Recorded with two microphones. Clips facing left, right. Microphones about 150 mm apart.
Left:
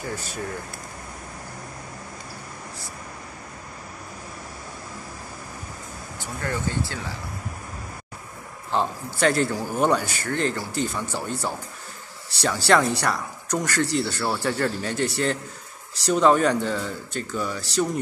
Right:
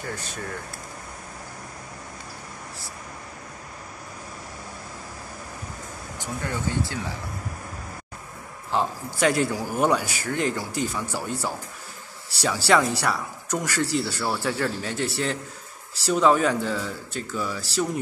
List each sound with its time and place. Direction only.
6.1 s speech: 15° right (ahead or behind)
8.7 s speech: 10° right (ahead or behind)